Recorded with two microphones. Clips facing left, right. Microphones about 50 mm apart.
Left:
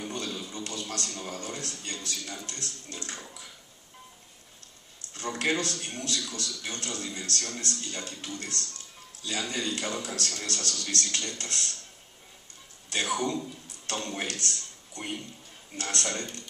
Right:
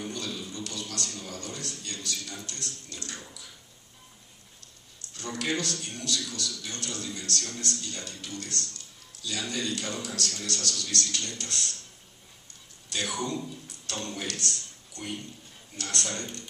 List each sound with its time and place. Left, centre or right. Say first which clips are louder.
0.1 s a sound: left 1 dB; left
2.4 s speech: left 1 dB; left
5.1 s a man's voice: left 2 dB; left
12.9 s a man's voice: left 3 dB; left